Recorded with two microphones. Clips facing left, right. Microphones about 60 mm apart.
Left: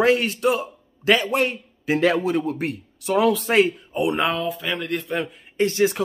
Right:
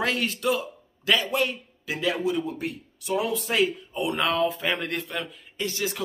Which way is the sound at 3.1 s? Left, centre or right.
Left.